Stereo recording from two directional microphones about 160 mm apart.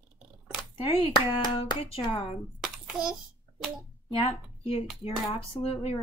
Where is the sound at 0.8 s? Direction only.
35° left (ahead or behind).